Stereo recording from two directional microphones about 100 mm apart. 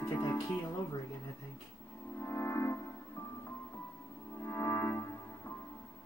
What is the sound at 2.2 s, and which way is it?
Music, 30° left (ahead or behind).